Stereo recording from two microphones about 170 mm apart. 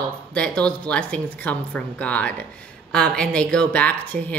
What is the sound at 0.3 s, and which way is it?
A woman's voice, 5° left (ahead or behind).